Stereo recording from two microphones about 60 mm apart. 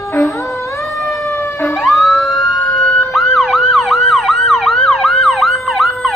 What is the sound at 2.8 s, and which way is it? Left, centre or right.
Emergency vehicle, centre.